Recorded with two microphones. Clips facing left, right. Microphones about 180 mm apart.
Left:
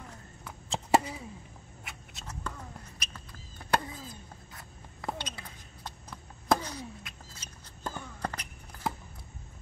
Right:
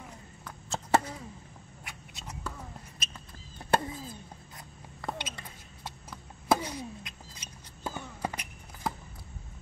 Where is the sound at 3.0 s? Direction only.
20° right (ahead or behind).